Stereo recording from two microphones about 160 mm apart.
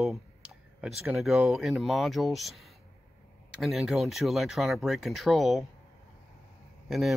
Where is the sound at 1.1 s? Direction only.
Centre (ahead or behind).